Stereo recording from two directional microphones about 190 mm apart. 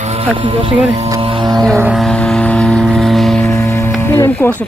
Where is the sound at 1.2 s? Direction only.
25° right (ahead or behind).